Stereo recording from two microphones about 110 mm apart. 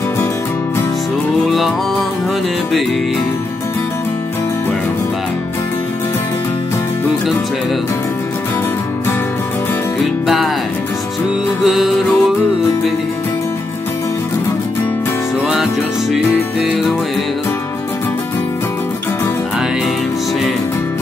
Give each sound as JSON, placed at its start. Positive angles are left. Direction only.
{"t": 1.5, "sound": "music", "side_deg": 0}
{"t": 10.2, "sound": "music", "side_deg": 0}
{"t": 11.6, "sound": "music", "side_deg": 0}
{"t": 15.4, "sound": "music", "side_deg": -5}